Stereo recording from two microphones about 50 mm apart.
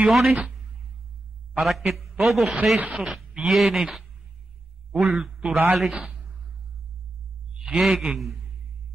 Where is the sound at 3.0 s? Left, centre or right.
Centre.